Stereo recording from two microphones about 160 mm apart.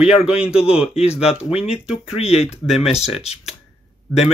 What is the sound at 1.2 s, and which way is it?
Speech, 40° left (ahead or behind).